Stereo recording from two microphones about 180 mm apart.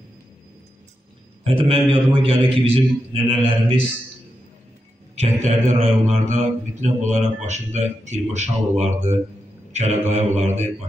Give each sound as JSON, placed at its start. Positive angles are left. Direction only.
{"t": 1.4, "sound": "a man's voice", "side_deg": -30}
{"t": 5.1, "sound": "a man's voice", "side_deg": -40}